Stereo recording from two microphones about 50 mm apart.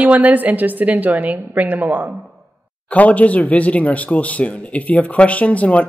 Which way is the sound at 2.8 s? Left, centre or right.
Left.